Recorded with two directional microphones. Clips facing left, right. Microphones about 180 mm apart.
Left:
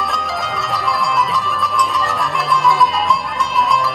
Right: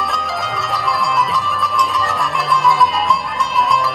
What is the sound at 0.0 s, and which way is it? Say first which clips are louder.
Music: even; centre (ahead or behind).